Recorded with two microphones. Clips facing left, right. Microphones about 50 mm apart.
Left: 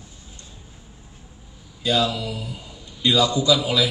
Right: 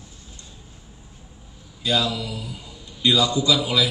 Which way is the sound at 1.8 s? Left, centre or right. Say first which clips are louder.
Left 2 dB; left.